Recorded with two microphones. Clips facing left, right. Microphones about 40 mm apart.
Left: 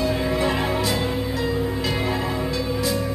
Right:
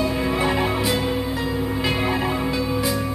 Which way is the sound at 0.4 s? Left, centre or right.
Centre.